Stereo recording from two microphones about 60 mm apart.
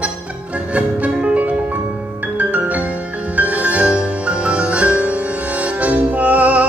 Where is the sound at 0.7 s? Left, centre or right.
Right.